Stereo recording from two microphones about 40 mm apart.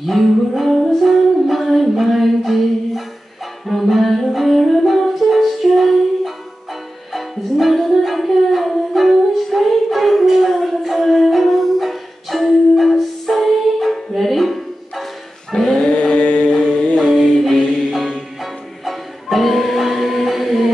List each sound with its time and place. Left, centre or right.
0.0 s music: centre
7.9 s a sound: centre
10.5 s music: centre
15.8 s chant: left
17.9 s music: centre